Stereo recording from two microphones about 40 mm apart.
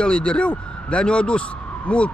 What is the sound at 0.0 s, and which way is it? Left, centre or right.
Speech, left.